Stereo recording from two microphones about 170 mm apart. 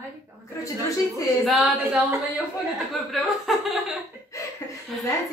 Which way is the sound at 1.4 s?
Centre (ahead or behind).